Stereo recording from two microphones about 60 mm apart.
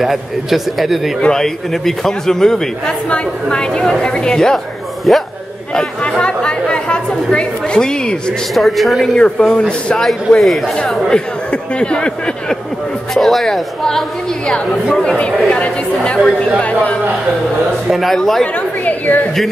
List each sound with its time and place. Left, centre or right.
0.0 s speech: centre
5.8 s speech: centre
8.5 s speech: centre
9.1 s speech: centre
10.0 s speech: centre
11.1 s speech: centre
13.1 s speech: centre
15.0 s speech: centre
17.8 s speech: centre
18.9 s a woman's voice: left